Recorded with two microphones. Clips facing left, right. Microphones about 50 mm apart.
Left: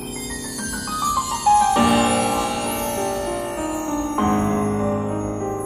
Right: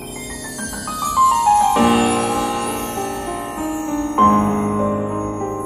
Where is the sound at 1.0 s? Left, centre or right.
Right.